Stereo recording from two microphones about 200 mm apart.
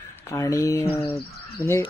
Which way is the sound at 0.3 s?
15° left (ahead or behind).